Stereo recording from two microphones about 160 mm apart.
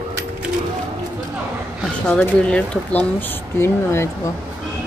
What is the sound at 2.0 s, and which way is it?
Speech, 5° left (ahead or behind).